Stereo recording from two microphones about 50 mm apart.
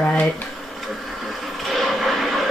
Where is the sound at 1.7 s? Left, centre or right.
Centre.